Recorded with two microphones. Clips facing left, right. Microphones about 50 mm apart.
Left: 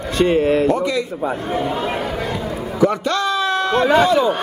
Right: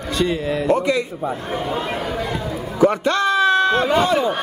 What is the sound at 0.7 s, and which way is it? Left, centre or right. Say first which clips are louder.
Speech: even; right.